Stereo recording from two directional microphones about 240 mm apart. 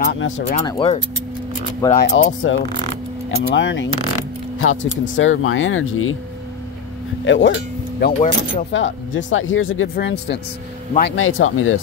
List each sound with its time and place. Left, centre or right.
0.1 s speech: left
0.7 s speech: left
2.0 s speech: left
7.2 s speech: left
8.0 s speech: left
8.7 s speech: left